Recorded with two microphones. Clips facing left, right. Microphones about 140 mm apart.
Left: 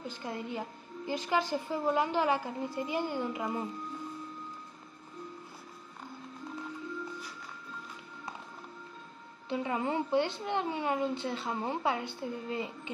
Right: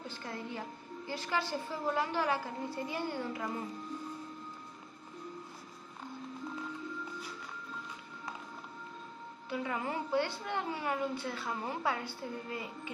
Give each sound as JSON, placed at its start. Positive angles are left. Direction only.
{"t": 0.0, "sound": "a woman's voice", "side_deg": 15}
{"t": 9.5, "sound": "a woman's voice", "side_deg": 25}